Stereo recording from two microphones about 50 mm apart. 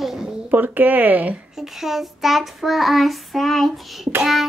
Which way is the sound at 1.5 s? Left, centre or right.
Centre.